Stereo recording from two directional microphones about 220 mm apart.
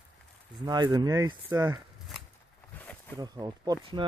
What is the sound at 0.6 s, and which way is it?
Speech, 20° right (ahead or behind).